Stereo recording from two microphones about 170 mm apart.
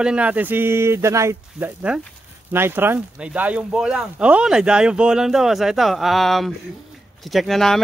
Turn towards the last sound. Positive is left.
turn(degrees=0)  # may be behind; listen again after turning